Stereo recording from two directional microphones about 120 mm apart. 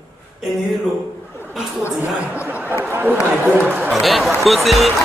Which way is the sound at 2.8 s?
15° right (ahead or behind).